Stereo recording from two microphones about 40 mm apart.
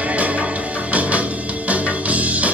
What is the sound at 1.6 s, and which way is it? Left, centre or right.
Music, right.